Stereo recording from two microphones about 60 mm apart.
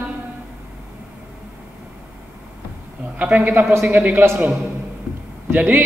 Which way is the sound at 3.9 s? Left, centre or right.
Right.